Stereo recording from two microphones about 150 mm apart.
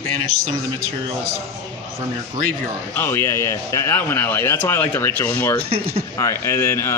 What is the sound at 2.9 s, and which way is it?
A man's voice, 15° left (ahead or behind).